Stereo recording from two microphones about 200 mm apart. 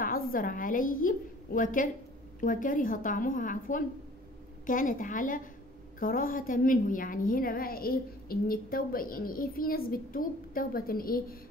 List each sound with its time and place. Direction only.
0.0 s a woman's voice: 45° left (ahead or behind)